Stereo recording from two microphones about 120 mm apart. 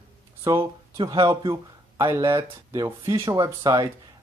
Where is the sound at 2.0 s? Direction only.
20° right (ahead or behind).